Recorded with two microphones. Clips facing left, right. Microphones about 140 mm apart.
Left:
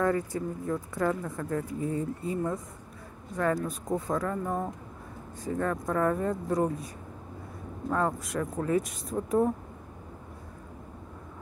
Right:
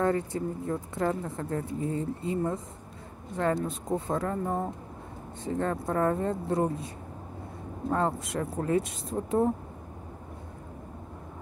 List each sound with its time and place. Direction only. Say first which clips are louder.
0.0 s a woman's voice: even; 25° right (ahead or behind)
7.9 s a woman's voice: even; 30° right (ahead or behind)